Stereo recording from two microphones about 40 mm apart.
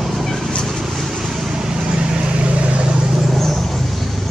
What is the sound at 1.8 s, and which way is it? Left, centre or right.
Vehicle, centre.